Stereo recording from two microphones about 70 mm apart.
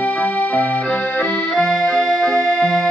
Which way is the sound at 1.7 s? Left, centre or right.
Centre.